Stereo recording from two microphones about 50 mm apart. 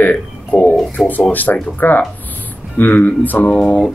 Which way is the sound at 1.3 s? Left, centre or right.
Left.